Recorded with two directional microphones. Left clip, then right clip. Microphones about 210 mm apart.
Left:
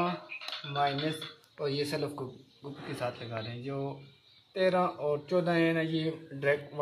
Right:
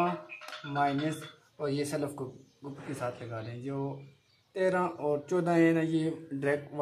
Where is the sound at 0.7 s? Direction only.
35° right (ahead or behind).